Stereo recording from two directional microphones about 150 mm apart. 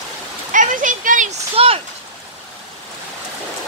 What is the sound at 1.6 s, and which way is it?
Speech, 40° right (ahead or behind).